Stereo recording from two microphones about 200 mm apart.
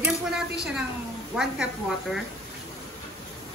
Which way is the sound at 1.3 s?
5° right (ahead or behind).